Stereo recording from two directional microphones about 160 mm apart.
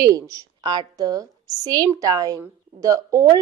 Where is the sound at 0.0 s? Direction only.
20° right (ahead or behind).